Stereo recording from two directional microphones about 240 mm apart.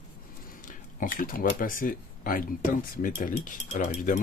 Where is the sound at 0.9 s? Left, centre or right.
Left.